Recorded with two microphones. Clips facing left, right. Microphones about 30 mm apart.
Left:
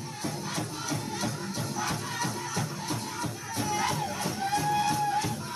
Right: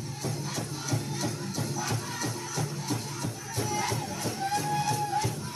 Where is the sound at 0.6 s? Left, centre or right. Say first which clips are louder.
Left 1 dB; centre.